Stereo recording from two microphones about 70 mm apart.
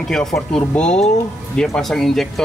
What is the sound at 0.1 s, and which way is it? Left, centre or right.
A man's voice, centre.